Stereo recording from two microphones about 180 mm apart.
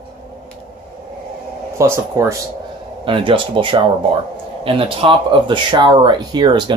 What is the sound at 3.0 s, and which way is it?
Speech, 30° right (ahead or behind).